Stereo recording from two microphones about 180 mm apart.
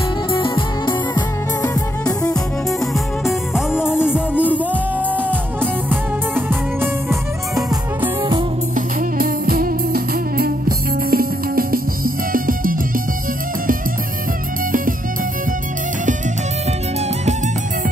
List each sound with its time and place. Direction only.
0.4 s music: 25° left (ahead or behind)
2.9 s music: centre (ahead or behind)
8.7 s music: 55° right (ahead or behind)